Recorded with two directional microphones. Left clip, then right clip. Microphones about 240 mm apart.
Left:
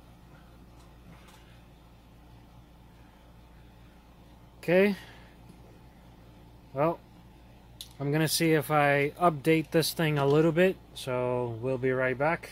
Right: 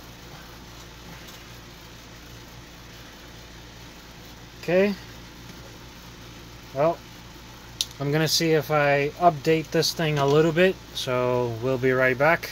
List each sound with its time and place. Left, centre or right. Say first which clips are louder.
4.6 s speech: right 2 dB; left
8.0 s speech: right 4 dB; left